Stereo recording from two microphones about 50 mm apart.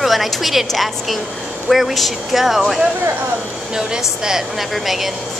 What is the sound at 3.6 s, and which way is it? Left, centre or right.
A woman's voice, centre.